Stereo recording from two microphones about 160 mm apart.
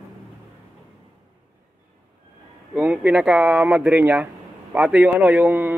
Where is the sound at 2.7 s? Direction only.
10° right (ahead or behind).